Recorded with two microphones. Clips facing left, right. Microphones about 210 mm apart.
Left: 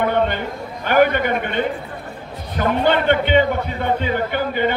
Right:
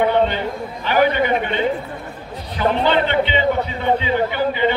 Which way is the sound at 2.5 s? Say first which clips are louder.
Even; 50° left (ahead or behind).